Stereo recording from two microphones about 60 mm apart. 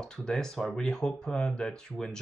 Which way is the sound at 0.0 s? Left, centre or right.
Centre.